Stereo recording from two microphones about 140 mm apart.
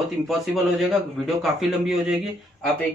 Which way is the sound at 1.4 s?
Centre (ahead or behind).